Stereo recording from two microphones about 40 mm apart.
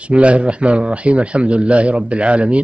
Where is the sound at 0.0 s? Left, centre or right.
Right.